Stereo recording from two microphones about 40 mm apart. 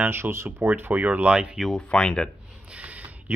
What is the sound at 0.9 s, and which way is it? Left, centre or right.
Speech, right.